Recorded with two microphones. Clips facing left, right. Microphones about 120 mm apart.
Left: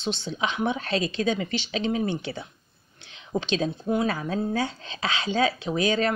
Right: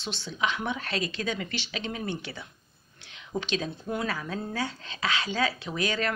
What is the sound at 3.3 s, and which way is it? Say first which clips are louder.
Speech: left 5 dB; 30° left (ahead or behind).